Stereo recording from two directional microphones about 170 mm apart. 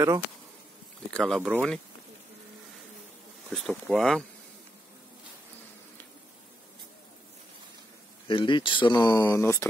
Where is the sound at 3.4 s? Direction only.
Centre (ahead or behind).